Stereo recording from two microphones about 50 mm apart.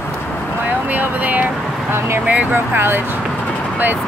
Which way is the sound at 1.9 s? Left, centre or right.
Right.